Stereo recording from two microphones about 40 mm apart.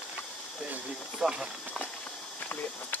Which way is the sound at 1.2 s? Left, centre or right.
Centre.